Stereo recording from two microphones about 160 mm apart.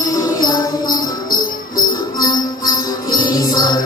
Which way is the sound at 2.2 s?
25° left (ahead or behind).